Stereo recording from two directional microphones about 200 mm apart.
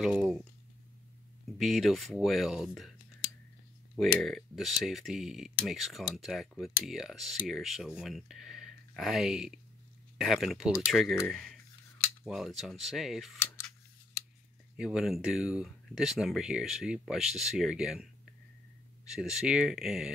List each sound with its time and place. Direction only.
0.0 s speech: centre (ahead or behind)
1.6 s speech: centre (ahead or behind)
3.9 s speech: centre (ahead or behind)
13.6 s scissors: 10° left (ahead or behind)
14.8 s speech: 5° right (ahead or behind)